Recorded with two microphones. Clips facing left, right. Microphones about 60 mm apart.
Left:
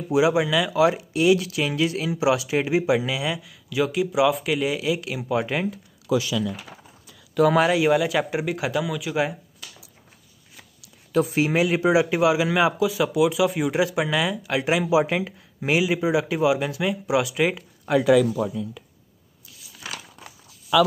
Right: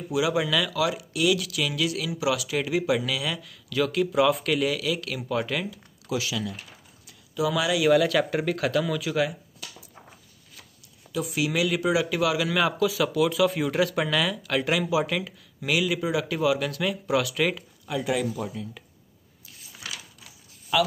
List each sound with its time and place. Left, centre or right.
0.1 s speech: left; by 4.6 s centre
4.6 s speech: left
7.3 s speech: left
7.9 s speech: centre
9.1 s speech: left
11.1 s speech: left; by 17.6 s centre
17.9 s speech: left